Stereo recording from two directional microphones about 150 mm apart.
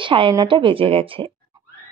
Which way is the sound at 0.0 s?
35° right (ahead or behind).